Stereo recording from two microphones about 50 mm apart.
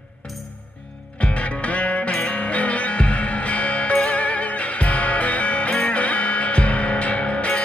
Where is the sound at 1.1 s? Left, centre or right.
Left.